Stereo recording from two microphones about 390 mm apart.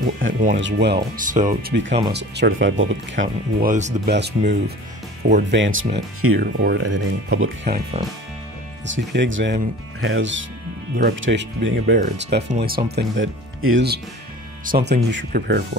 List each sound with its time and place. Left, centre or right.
0.2 s speech: centre
7.6 s speech: centre
8.8 s speech: right